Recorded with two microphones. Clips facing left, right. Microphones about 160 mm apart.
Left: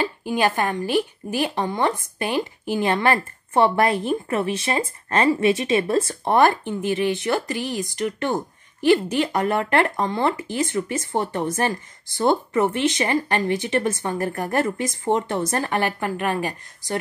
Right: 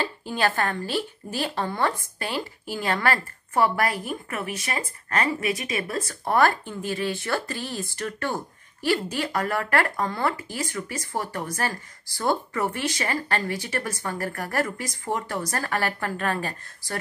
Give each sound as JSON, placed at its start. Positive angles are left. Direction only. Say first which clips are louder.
{"t": 0.0, "sound": "a woman's voice", "louder": "left 4 dB", "side_deg": 15}